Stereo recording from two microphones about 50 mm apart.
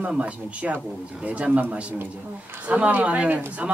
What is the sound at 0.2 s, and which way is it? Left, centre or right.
Speech, right.